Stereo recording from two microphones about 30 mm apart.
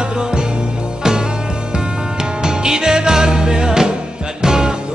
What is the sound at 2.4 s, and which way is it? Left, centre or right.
Music, right.